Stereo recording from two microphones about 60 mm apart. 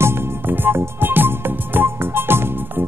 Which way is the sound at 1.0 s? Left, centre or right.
Right.